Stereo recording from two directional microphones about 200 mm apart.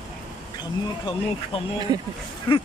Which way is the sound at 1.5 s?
30° left (ahead or behind).